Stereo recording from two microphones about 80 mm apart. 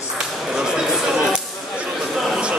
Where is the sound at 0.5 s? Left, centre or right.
Centre.